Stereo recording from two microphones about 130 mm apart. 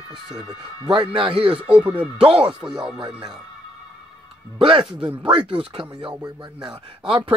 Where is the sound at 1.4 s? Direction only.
10° right (ahead or behind).